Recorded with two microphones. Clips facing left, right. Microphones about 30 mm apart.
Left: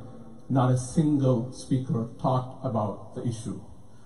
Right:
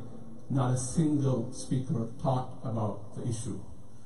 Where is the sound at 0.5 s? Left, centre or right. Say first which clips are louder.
Left 6 dB; centre.